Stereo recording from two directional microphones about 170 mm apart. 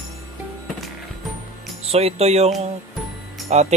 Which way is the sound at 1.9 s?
35° right (ahead or behind).